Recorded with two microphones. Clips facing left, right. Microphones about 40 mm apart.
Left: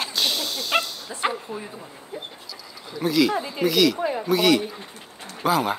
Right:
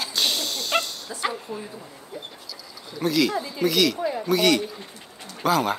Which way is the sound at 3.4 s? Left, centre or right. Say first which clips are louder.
Left 1 dB; left.